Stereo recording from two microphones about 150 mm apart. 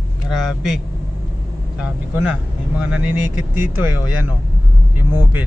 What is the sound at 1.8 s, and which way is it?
Speech, 5° right (ahead or behind).